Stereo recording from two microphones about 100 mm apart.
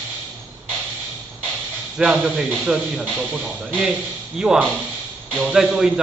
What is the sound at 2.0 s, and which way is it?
A man's voice, 10° right (ahead or behind).